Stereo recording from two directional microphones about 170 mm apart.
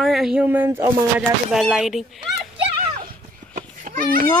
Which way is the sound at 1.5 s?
Centre (ahead or behind).